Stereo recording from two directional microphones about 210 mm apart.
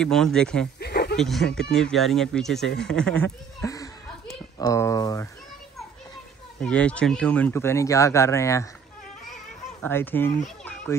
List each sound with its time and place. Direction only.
0.0 s speech: 5° left (ahead or behind)
0.7 s a sound: 50° left (ahead or behind)
1.1 s speech: centre (ahead or behind)
3.6 s a sound: 15° left (ahead or behind)
4.6 s speech: 15° left (ahead or behind)
6.6 s speech: 5° left (ahead or behind)
9.8 s a child's voice: 10° left (ahead or behind)